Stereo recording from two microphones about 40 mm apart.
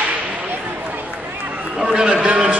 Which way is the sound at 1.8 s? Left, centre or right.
Centre.